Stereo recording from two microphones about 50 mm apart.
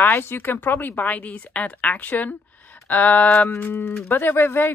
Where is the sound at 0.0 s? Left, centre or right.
Left.